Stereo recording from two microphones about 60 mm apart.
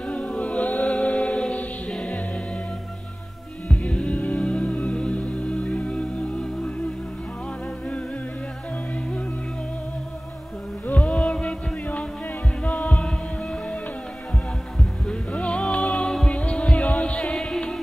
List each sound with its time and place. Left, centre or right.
0.1 s music: left
3.6 s music: centre
10.9 s music: left
15.3 s music: centre